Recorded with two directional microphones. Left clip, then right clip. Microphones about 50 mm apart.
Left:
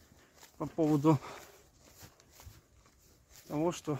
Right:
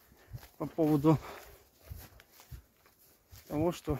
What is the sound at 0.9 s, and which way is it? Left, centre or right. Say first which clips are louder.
Speech: even; left.